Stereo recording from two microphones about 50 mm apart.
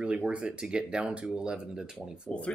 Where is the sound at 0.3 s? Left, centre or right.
Right.